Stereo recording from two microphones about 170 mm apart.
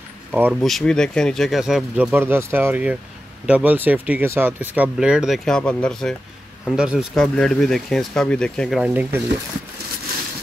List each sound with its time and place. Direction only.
0.3 s speech: 5° right (ahead or behind)